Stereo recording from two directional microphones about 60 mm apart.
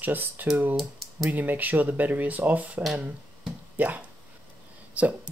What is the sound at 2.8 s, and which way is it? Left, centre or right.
Speech, centre.